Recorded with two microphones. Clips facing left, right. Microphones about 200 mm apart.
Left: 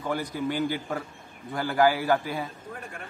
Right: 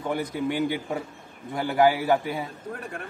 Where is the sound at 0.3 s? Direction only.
60° right (ahead or behind).